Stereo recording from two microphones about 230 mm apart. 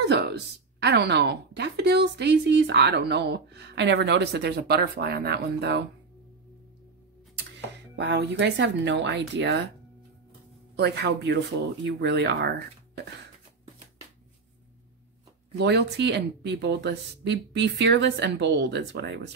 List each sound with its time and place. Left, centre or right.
0.8 s speech: right
7.9 s speech: right
10.8 s speech: right
15.5 s speech: right